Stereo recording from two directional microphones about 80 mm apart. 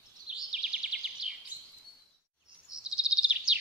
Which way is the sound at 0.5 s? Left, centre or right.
Centre.